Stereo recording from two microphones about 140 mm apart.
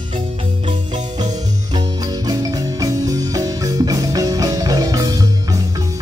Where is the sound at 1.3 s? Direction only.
30° right (ahead or behind).